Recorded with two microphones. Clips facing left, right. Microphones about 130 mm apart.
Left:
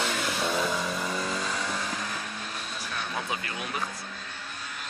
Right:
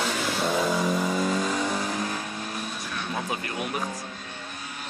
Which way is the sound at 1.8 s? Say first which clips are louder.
Right 5 dB; 30° right (ahead or behind).